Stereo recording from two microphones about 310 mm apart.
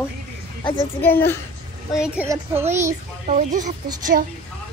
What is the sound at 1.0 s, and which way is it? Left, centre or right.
Speech, centre.